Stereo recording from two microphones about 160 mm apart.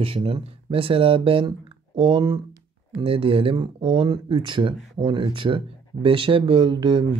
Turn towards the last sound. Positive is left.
turn(degrees=-30)  # may be behind; listen again after turning